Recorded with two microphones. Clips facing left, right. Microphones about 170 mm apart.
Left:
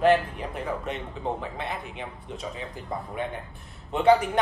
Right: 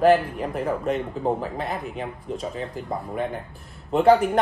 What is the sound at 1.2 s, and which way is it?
Speech, 40° right (ahead or behind).